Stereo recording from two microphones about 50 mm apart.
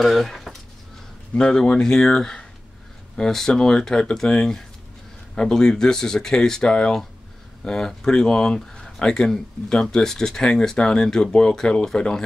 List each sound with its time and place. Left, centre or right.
0.0 s speech: centre
1.3 s speech: centre
9.0 s speech: centre